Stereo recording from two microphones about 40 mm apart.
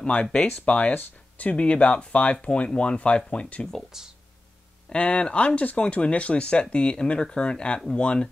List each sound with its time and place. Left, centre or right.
0.0 s speech: left
4.8 s speech: left